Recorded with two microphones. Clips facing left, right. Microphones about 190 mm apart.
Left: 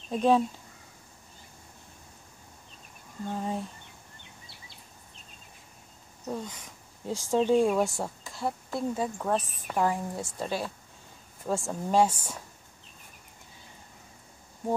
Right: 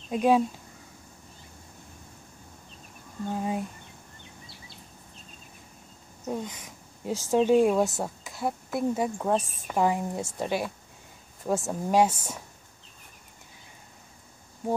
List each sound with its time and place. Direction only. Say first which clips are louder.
0.1 s speech: right 1 dB; 10° right (ahead or behind)
3.3 s a woman's voice: right 2 dB; 10° right (ahead or behind)
6.2 s a woman's voice: right 2 dB; 20° right (ahead or behind)